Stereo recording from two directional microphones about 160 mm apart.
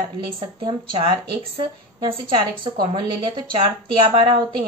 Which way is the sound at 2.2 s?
30° right (ahead or behind).